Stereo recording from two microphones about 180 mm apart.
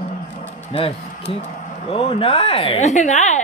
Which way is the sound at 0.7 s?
30° left (ahead or behind).